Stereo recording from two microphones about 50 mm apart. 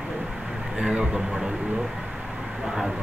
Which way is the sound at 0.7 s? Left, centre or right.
Centre.